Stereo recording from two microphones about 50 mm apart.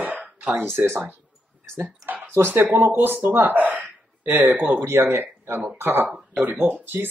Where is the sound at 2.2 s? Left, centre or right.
Right.